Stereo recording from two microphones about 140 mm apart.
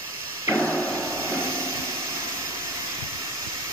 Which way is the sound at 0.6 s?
5° left (ahead or behind).